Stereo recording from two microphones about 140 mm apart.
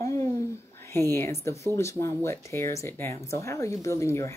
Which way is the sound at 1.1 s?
20° left (ahead or behind).